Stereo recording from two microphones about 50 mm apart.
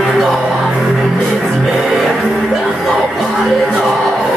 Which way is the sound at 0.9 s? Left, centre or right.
Centre.